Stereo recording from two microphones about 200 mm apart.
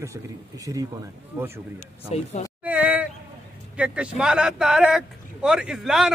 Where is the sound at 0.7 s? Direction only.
15° right (ahead or behind).